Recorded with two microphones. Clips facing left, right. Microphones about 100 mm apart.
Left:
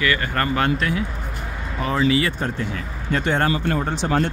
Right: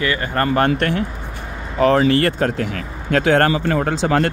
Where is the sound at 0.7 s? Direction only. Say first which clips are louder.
Right 3 dB; 60° right (ahead or behind).